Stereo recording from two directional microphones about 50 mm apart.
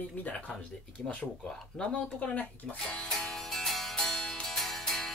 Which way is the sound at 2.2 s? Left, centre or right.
Left.